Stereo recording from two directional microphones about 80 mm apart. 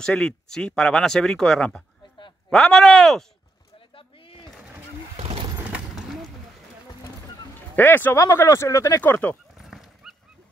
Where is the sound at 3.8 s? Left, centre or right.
Left.